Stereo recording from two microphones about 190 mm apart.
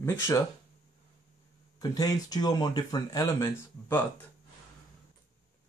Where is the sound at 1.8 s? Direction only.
20° left (ahead or behind).